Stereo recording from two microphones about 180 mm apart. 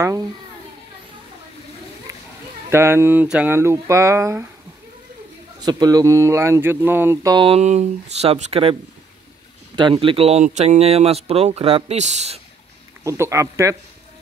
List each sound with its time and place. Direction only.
2.7 s speech: 15° right (ahead or behind)
5.6 s speech: 20° right (ahead or behind)
7.3 s speech: 30° right (ahead or behind)
9.8 s speech: 30° right (ahead or behind)
13.0 s speech: 15° right (ahead or behind)